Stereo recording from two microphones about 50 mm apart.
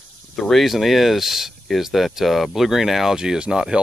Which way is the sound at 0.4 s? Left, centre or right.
Centre.